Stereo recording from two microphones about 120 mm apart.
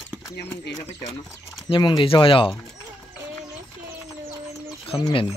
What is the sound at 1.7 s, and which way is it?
Speech, 45° left (ahead or behind).